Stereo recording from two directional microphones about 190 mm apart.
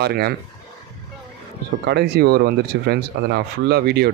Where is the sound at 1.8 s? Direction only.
60° right (ahead or behind).